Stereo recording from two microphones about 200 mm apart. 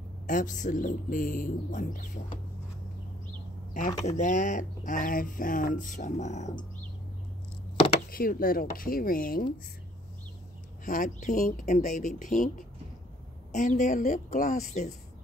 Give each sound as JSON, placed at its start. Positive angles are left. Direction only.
{"t": 0.3, "sound": "speech", "side_deg": 40}
{"t": 3.7, "sound": "speech", "side_deg": 40}
{"t": 8.1, "sound": "speech", "side_deg": 45}
{"t": 10.9, "sound": "speech", "side_deg": 40}